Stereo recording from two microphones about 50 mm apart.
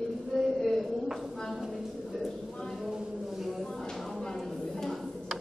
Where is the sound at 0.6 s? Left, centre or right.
Centre.